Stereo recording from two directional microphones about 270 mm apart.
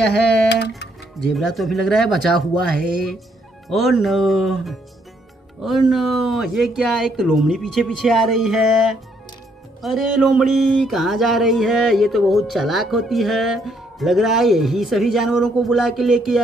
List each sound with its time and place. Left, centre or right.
0.5 s speech: left
1.2 s speech: centre
3.6 s speech: centre